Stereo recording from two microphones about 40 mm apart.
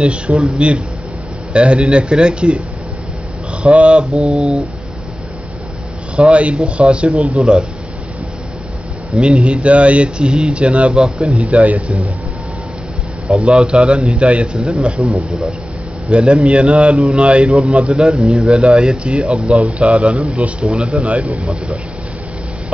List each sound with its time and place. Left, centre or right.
0.0 s speech: right
3.6 s speech: right
6.1 s speech: right
9.3 s speech: right
13.3 s speech: right